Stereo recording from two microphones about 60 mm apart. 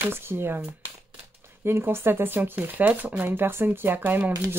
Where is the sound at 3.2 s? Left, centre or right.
Right.